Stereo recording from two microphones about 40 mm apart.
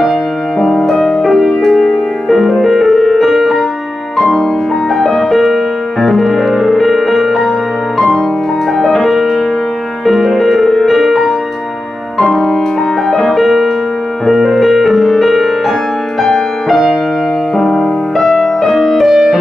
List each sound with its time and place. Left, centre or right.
0.0 s music: centre
4.9 s music: centre
8.7 s music: centre
14.2 s music: centre